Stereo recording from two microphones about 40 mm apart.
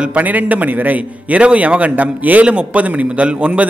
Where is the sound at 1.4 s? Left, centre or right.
Right.